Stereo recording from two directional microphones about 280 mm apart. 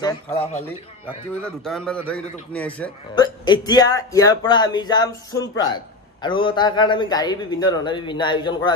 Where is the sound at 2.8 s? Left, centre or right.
Centre.